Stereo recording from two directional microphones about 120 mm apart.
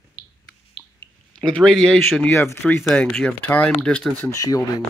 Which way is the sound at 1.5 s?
5° left (ahead or behind).